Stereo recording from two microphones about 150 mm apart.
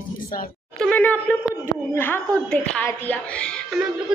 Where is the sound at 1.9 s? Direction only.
15° left (ahead or behind).